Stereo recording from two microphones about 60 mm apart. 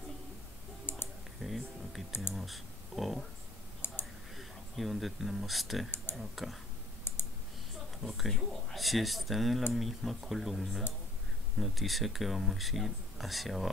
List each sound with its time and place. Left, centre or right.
0.9 s computer keyboard: left
1.4 s speech: centre
3.8 s clicking: left
4.4 s speech: centre
6.1 s typing: left
7.1 s clicking: left
8.0 s speech: centre